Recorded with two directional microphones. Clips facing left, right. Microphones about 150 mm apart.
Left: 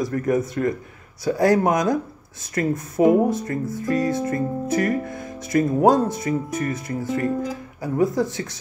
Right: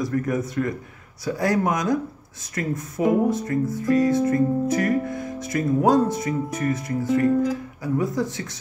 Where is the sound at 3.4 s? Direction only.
30° left (ahead or behind).